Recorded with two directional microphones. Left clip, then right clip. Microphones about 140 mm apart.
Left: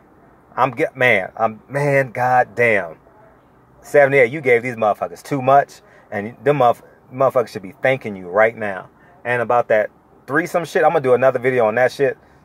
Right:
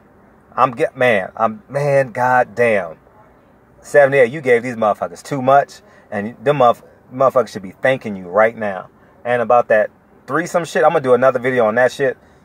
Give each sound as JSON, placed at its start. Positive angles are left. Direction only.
{"t": 0.6, "sound": "speech", "side_deg": 15}
{"t": 1.8, "sound": "mantra", "side_deg": 20}
{"t": 3.8, "sound": "speech", "side_deg": 15}